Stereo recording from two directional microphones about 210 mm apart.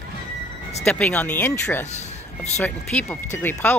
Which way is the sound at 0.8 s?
5° left (ahead or behind).